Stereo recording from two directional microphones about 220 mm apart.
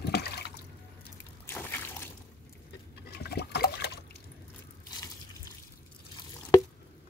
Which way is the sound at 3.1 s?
50° left (ahead or behind).